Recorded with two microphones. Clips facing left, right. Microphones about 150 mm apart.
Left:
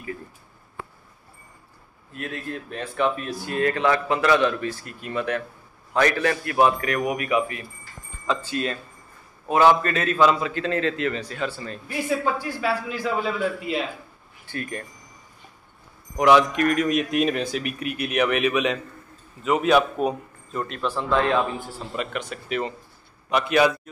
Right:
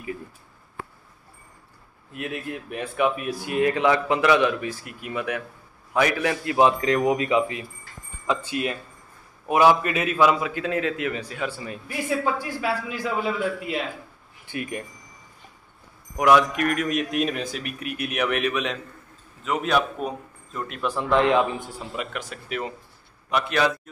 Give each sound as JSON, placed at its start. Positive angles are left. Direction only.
{"t": 2.1, "sound": "a man's voice", "side_deg": -15}
{"t": 13.1, "sound": "a man's voice", "side_deg": -5}
{"t": 14.4, "sound": "speech", "side_deg": -15}
{"t": 16.2, "sound": "a man's voice", "side_deg": 0}
{"t": 20.6, "sound": "speech", "side_deg": -10}
{"t": 21.9, "sound": "a man's voice", "side_deg": -5}